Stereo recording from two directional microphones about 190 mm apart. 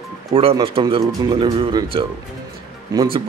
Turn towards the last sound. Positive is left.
turn(degrees=-20)  # may be behind; listen again after turning